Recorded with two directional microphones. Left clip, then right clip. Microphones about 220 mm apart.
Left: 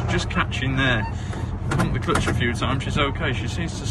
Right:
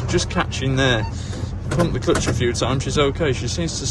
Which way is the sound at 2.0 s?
15° right (ahead or behind).